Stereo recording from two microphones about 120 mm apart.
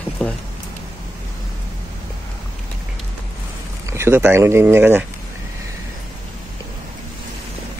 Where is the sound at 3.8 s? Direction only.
20° right (ahead or behind).